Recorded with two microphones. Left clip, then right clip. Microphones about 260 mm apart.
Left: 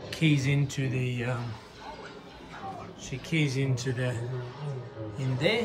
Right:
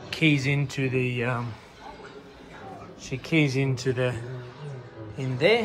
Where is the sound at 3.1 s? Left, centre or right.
Centre.